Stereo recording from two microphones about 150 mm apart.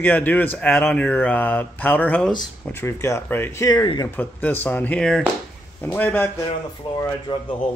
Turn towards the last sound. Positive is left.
turn(degrees=30)  # may be behind; listen again after turning